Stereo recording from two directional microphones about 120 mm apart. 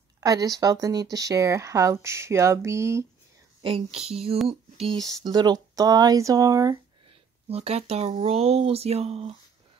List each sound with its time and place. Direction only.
0.2 s speech: 30° right (ahead or behind)
3.6 s speech: 55° right (ahead or behind)
4.5 s a sound: 55° right (ahead or behind)
5.2 s speech: 35° right (ahead or behind)
7.4 s speech: 60° right (ahead or behind)